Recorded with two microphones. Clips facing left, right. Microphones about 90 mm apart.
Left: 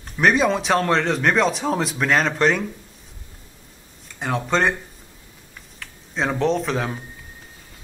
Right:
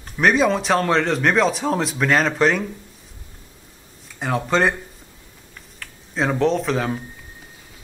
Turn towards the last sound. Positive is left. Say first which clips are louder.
# right 2 dB
turn(degrees=0)  # may be behind; listen again after turning